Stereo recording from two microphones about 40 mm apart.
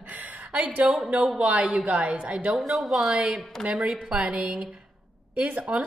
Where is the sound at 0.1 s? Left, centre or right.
Right.